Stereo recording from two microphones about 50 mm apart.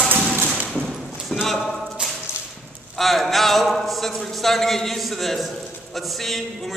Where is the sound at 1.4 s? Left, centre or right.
Centre.